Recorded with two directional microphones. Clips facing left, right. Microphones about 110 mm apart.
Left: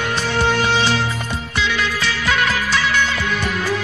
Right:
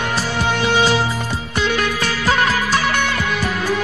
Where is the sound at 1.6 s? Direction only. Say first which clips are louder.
Right 2 dB; 50° right (ahead or behind).